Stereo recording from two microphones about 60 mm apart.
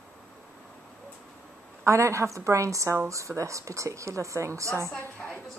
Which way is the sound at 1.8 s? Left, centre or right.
Right.